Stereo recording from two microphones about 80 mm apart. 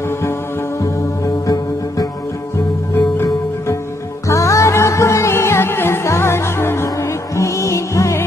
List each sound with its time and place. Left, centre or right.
0.7 s music: left
4.3 s music: left